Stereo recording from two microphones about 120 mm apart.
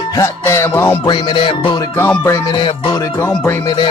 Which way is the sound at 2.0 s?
20° left (ahead or behind).